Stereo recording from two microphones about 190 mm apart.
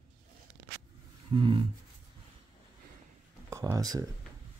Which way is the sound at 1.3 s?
25° right (ahead or behind).